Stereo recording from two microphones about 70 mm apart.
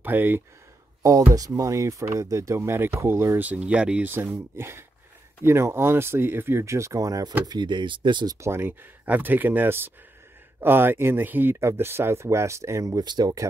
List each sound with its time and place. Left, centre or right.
0.0 s speech: right
1.0 s speech: right
3.3 s speech: right
4.1 s speech: right
7.4 s speech: right
8.4 s speech: right
9.0 s speech: right
13.0 s speech: right